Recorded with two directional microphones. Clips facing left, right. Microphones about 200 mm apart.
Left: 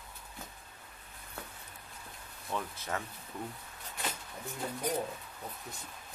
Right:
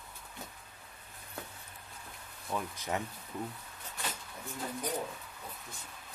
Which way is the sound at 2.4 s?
10° right (ahead or behind).